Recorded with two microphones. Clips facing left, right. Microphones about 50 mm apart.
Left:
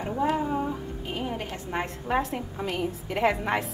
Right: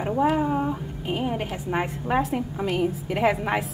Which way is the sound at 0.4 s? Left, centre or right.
Centre.